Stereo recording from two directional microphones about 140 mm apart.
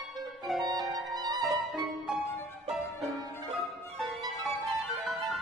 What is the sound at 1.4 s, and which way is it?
Music, centre (ahead or behind).